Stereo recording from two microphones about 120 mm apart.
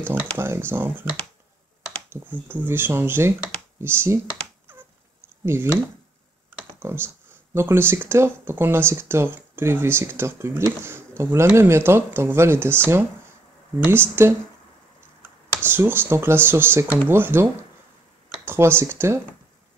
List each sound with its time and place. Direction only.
0.4 s speech: 20° right (ahead or behind)
4.7 s a sound: 20° right (ahead or behind)
6.8 s speech: 20° right (ahead or behind)
15.6 s speech: 20° right (ahead or behind)